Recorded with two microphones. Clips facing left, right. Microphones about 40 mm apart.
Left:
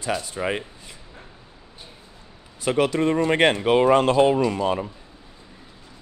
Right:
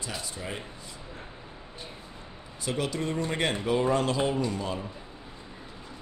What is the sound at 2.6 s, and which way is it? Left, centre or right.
Speech, left.